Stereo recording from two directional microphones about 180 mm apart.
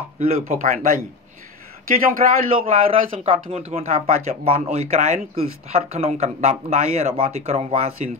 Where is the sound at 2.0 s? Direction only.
50° right (ahead or behind).